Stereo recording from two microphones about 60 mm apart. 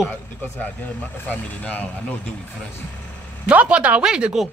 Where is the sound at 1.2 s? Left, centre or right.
Left.